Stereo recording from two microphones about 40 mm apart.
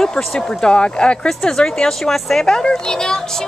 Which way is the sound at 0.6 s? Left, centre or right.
Left.